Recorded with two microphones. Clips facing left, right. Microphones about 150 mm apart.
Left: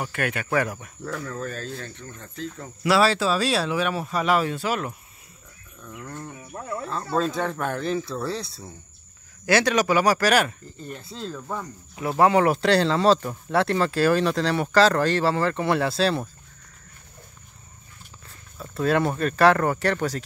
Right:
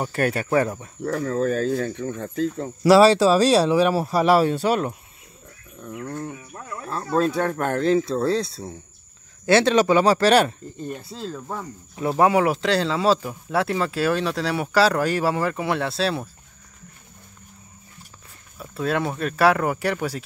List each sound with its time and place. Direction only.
0.0 s speech: 35° right (ahead or behind)
1.2 s speech: 45° right (ahead or behind)
2.0 s speech: 55° right (ahead or behind)
2.5 s speech: 35° right (ahead or behind)
5.8 s speech: 20° right (ahead or behind)
8.0 s speech: 25° right (ahead or behind)
10.8 s speech: 15° right (ahead or behind)
11.1 s speech: 5° right (ahead or behind)
18.6 s speech: centre (ahead or behind)